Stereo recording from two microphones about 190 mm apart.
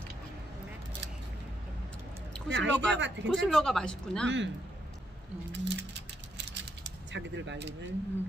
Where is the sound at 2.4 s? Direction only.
70° right (ahead or behind).